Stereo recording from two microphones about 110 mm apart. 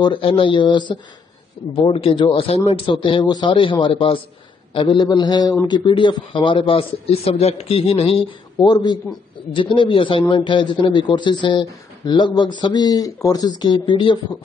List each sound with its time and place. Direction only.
0.0 s a man's voice: 50° left (ahead or behind)
1.8 s a man's voice: 55° left (ahead or behind)
4.7 s a sound: 45° left (ahead or behind)
5.7 s a man's voice: 45° left (ahead or behind); by 8.2 s 65° left (ahead or behind)
8.5 s a sound: 35° left (ahead or behind)
9.5 s a man's voice: 50° left (ahead or behind)